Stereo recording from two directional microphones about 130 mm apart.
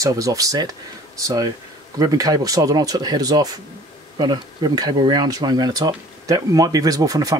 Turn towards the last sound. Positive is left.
turn(degrees=-30)  # may be behind; listen again after turning